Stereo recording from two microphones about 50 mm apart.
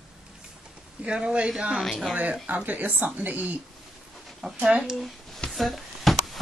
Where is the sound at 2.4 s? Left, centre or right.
Right.